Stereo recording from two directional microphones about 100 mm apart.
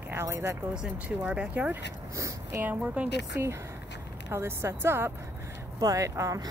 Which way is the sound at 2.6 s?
15° right (ahead or behind).